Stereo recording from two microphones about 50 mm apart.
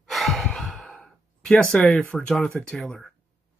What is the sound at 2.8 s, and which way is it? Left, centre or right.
Speech, centre.